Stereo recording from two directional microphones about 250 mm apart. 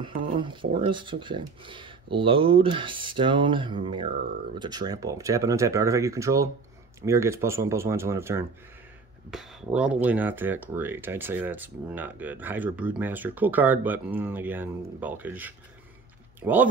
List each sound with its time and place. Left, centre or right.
0.4 s speech: centre